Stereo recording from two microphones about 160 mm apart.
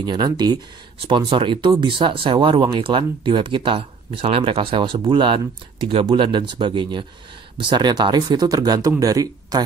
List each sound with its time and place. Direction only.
0.0 s speech: 25° right (ahead or behind)